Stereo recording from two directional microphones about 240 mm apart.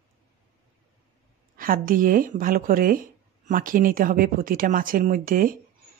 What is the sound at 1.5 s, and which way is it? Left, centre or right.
Speech, right.